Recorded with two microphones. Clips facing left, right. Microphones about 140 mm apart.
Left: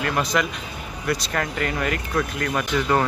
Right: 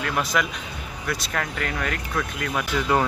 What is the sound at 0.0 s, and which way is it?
Speech, centre (ahead or behind).